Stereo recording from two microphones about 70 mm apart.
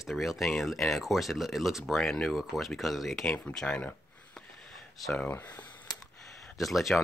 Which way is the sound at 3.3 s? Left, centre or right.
Centre.